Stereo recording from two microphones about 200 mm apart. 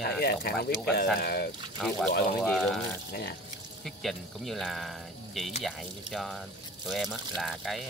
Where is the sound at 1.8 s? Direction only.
5° left (ahead or behind).